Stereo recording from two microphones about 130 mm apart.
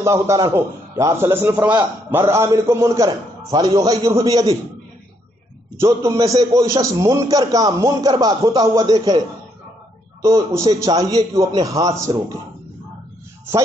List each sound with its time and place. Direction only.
0.0 s a man's voice: 25° right (ahead or behind)
5.8 s a man's voice: 25° right (ahead or behind)
10.2 s a man's voice: 25° right (ahead or behind)